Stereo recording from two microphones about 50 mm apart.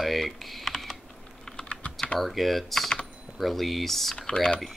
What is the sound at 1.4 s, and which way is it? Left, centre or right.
Typing, left.